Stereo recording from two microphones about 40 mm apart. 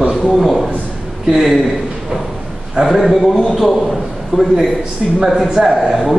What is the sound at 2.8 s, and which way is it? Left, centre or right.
Speech, right.